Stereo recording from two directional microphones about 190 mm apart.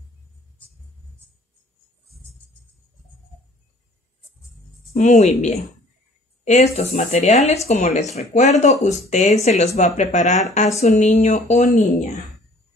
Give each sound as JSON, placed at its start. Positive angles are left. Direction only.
{"t": 4.9, "sound": "speech", "side_deg": 40}